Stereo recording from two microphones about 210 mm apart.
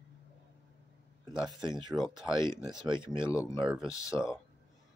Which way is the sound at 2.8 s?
20° right (ahead or behind).